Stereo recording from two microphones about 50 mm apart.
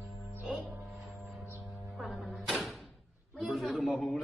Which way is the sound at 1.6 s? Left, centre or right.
Centre.